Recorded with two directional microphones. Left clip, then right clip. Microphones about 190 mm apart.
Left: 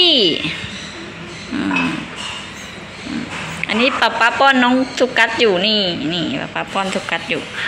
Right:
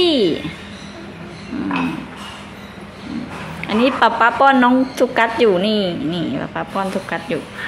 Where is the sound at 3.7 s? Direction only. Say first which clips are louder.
Right 1 dB; 25° right (ahead or behind).